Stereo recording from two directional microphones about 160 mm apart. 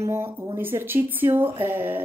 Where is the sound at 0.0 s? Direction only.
15° right (ahead or behind).